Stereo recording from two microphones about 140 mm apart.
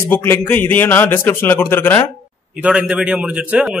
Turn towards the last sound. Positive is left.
turn(degrees=-5)  # may be behind; listen again after turning